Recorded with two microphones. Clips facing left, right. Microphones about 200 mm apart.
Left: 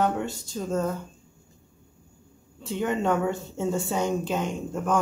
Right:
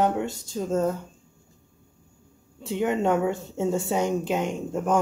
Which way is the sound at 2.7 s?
20° right (ahead or behind).